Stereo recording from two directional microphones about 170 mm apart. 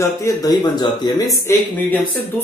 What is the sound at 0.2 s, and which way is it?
Speech, 20° left (ahead or behind).